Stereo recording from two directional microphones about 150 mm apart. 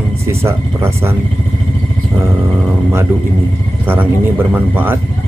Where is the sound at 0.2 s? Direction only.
15° right (ahead or behind).